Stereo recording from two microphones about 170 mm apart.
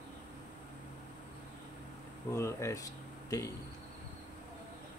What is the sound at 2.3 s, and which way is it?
Speech, 15° left (ahead or behind).